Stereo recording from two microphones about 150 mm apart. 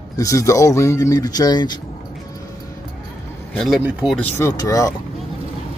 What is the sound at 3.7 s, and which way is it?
Speech, 10° right (ahead or behind).